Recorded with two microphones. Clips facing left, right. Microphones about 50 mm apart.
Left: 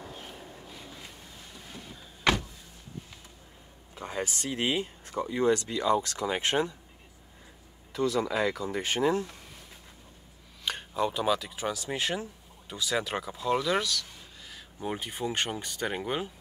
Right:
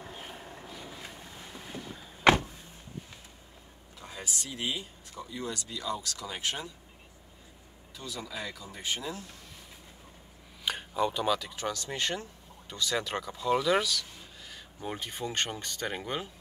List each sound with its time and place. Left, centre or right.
0.1 s vehicle: centre
1.5 s boat: right
2.3 s vehicle: right
3.9 s speech: left
7.9 s speech: left
10.6 s speech: centre
14.5 s speech: centre